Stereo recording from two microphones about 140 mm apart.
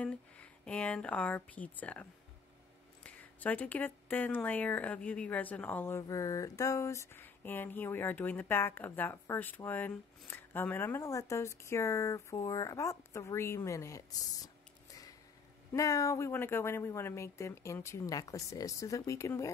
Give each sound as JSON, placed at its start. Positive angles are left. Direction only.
{"t": 0.0, "sound": "speech", "side_deg": 10}
{"t": 15.7, "sound": "speech", "side_deg": 25}